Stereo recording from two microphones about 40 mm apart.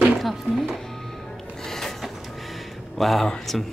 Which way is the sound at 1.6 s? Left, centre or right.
Centre.